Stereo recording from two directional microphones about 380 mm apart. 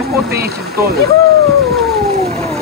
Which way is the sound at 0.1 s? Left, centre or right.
Right.